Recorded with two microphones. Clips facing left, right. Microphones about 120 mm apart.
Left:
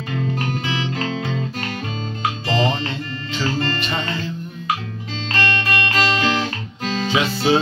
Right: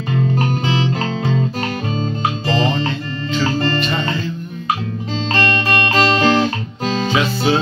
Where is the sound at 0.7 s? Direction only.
30° right (ahead or behind).